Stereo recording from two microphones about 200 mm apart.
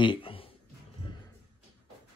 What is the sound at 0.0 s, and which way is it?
Music, 25° left (ahead or behind).